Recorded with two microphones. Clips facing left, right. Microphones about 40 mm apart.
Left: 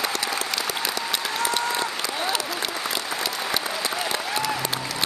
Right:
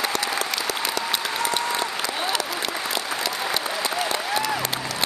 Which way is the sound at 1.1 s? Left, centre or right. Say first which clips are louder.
Right 1 dB; centre.